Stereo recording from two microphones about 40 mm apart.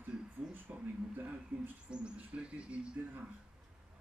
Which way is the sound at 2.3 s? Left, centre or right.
Right.